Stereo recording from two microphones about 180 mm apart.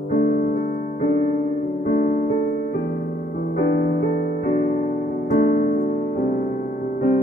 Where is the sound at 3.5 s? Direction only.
60° left (ahead or behind).